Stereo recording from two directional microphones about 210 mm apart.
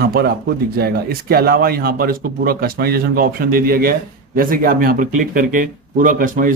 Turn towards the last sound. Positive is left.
turn(degrees=-40)  # may be behind; listen again after turning